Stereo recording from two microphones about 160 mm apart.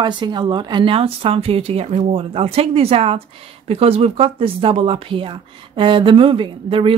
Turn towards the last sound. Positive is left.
turn(degrees=-35)  # may be behind; listen again after turning